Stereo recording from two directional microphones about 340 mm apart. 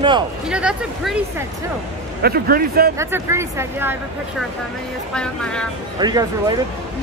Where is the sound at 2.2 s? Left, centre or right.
Right.